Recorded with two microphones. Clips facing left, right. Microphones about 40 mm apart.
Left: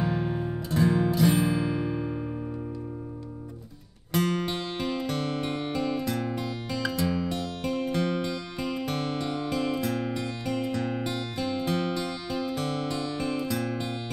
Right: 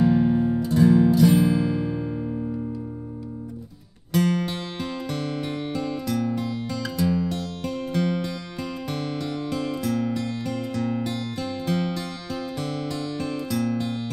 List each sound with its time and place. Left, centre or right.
0.0 s music: centre
4.1 s music: centre